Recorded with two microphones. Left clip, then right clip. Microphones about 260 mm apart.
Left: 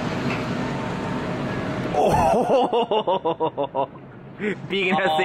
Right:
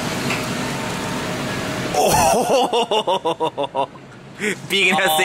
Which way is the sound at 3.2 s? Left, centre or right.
Left.